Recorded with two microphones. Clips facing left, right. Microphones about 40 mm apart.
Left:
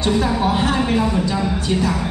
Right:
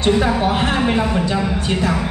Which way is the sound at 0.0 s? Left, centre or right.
Right.